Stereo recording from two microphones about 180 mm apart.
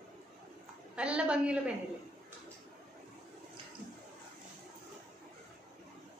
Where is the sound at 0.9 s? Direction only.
5° right (ahead or behind).